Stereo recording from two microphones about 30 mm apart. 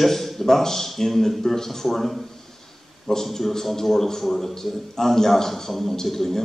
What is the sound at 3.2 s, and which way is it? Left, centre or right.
A man's voice, centre.